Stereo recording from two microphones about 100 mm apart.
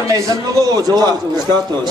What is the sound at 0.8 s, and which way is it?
Speech, 45° right (ahead or behind).